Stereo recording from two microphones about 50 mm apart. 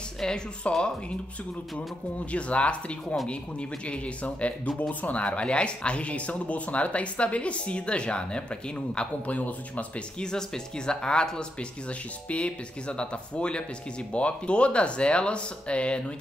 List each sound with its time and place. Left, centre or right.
0.2 s speech: centre
2.3 s speech: left